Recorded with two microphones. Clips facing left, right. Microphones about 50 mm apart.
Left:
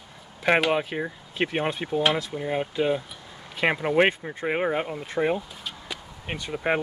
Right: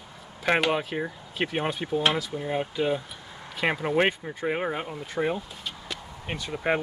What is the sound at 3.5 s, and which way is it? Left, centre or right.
Speech, centre.